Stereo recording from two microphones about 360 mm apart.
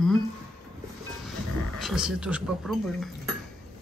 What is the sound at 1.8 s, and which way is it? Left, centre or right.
Speech, centre.